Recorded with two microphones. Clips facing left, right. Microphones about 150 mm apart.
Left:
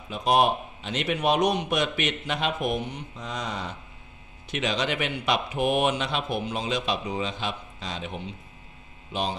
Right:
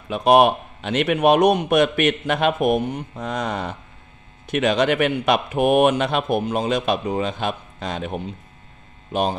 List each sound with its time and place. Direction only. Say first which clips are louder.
0.1 s a man's voice: right 7 dB; 65° right (ahead or behind)